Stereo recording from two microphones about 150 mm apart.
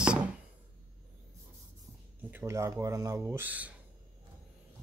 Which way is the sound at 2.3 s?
15° right (ahead or behind).